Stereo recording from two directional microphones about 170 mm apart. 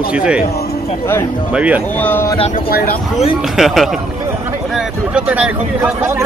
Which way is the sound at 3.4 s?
Centre (ahead or behind).